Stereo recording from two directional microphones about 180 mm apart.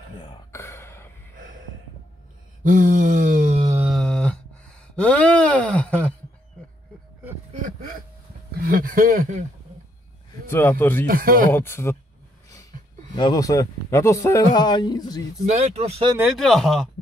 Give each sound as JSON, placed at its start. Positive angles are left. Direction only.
{"t": 0.5, "sound": "a sound", "side_deg": 15}
{"t": 2.6, "sound": "mantra", "side_deg": -45}
{"t": 3.8, "sound": "a sound", "side_deg": 0}
{"t": 8.6, "sound": "speech", "side_deg": -50}
{"t": 10.5, "sound": "speech", "side_deg": 10}
{"t": 11.1, "sound": "speech", "side_deg": -50}
{"t": 11.5, "sound": "speech", "side_deg": 15}
{"t": 13.1, "sound": "speech", "side_deg": 20}
{"t": 15.4, "sound": "speech", "side_deg": -40}
{"t": 16.2, "sound": "speech", "side_deg": 0}